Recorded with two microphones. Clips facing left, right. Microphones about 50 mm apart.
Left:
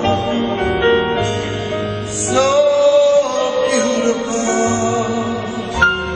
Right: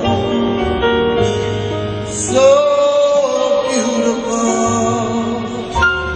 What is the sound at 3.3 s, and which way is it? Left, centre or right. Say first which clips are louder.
Music: right 1 dB; left.